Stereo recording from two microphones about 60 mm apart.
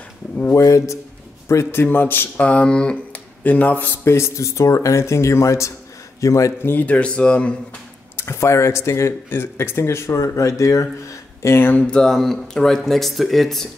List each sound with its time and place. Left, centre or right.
0.6 s speech: left
1.7 s a man's voice: left
2.4 s speech: centre
4.0 s speech: left
6.6 s speech: left
8.2 s speech: left
11.4 s speech: left
11.8 s speech: centre